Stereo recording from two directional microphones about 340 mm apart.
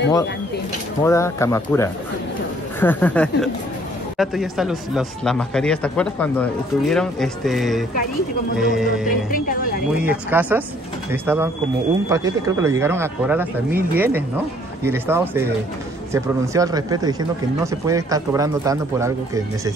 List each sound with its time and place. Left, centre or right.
1.0 s speech: centre
9.3 s speech: left
10.0 s speech: centre